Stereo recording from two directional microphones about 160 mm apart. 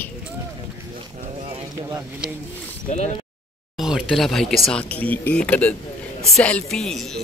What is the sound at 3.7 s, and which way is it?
Speech, 5° right (ahead or behind).